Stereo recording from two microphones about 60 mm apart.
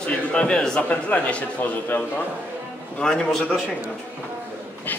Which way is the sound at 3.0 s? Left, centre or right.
Centre.